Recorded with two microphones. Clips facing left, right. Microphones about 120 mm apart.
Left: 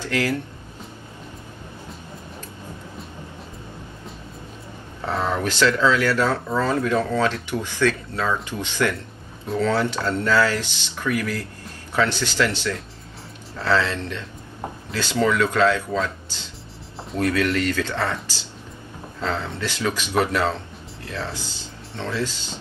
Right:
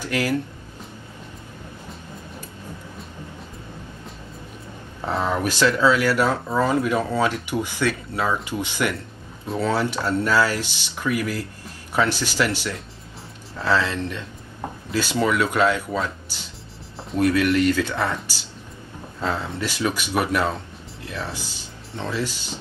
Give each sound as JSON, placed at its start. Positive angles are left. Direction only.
{"t": 0.0, "sound": "speech", "side_deg": -15}
{"t": 5.0, "sound": "speech", "side_deg": -15}
{"t": 19.2, "sound": "speech", "side_deg": -15}